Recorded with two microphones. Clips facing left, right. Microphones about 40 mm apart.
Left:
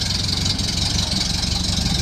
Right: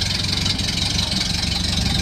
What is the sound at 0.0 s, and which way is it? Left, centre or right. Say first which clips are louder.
Engine: right 1 dB; right.